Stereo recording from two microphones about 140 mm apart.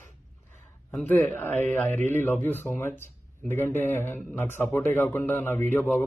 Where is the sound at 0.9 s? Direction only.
10° left (ahead or behind).